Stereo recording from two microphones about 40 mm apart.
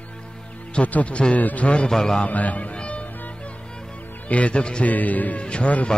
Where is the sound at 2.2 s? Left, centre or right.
Left.